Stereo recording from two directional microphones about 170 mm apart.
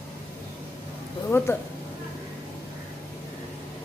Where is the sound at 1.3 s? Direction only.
15° left (ahead or behind).